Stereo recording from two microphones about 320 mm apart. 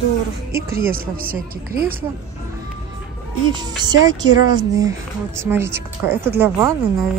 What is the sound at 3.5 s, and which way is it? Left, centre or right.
A woman's voice, centre.